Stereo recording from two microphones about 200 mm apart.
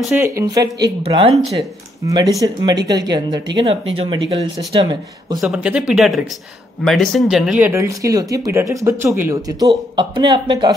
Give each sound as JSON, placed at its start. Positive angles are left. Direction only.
{"t": 0.0, "sound": "speech", "side_deg": -10}
{"t": 1.3, "sound": "speech", "side_deg": 0}
{"t": 2.4, "sound": "speech", "side_deg": -20}
{"t": 5.4, "sound": "speech", "side_deg": -5}